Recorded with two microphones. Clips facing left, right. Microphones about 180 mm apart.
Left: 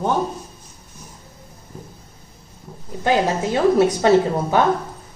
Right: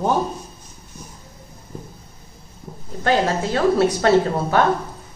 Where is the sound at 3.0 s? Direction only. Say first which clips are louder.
Even; 15° left (ahead or behind).